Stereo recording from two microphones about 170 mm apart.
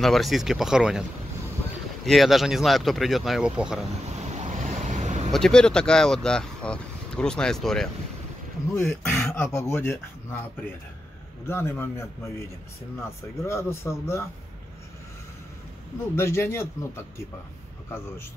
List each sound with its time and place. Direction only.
0.0 s speech: centre (ahead or behind)
2.0 s speech: centre (ahead or behind)
4.2 s vehicle: 40° right (ahead or behind)
5.3 s speech: 5° left (ahead or behind)
9.5 s speech: 15° left (ahead or behind)
11.4 s speech: 15° left (ahead or behind)
13.4 s speech: 15° left (ahead or behind)
16.2 s speech: 15° left (ahead or behind)